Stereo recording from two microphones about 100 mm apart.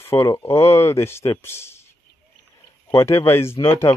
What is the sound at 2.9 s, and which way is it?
Speech, 30° left (ahead or behind).